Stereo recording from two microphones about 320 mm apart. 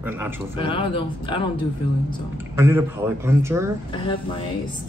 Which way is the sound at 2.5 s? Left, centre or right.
Centre.